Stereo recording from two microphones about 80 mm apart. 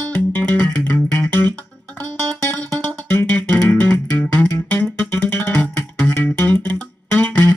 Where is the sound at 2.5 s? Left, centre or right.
Centre.